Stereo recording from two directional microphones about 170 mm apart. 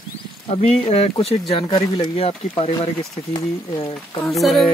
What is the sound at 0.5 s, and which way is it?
Speech, 40° left (ahead or behind).